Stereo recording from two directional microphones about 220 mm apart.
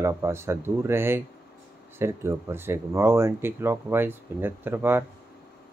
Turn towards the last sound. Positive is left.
turn(degrees=-10)  # may be behind; listen again after turning